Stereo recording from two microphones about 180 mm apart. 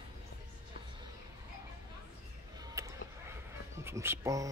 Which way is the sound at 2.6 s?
15° right (ahead or behind).